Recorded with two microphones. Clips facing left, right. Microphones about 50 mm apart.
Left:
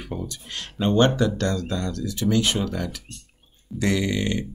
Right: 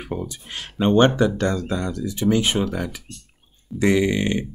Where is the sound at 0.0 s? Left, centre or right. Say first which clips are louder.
Right 3 dB; right.